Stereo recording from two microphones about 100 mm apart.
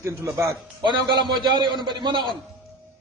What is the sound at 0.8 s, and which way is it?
A man's voice, 50° right (ahead or behind).